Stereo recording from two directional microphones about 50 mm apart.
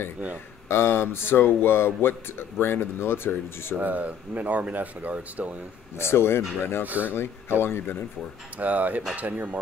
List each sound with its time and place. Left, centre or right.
0.7 s speech: left
3.7 s speech: right
5.9 s speech: left
6.9 s speech: right
7.6 s speech: left
8.5 s speech: right